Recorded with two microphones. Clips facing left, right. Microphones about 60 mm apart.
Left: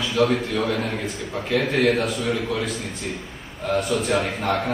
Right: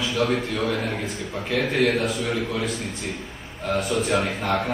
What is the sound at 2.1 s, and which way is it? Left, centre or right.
Speech, centre.